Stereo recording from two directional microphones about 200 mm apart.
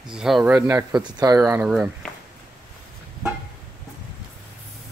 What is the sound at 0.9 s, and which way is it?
Speech, 20° right (ahead or behind).